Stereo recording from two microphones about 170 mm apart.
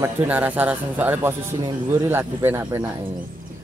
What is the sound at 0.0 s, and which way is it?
Speech, 10° right (ahead or behind).